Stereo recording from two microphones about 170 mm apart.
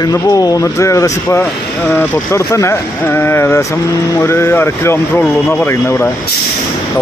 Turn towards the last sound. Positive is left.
turn(degrees=15)  # may be behind; listen again after turning